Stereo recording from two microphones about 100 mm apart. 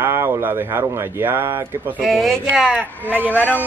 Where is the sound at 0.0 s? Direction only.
25° right (ahead or behind).